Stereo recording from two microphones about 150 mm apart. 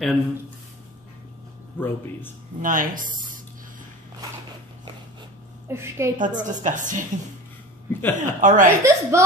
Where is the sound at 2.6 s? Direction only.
65° right (ahead or behind).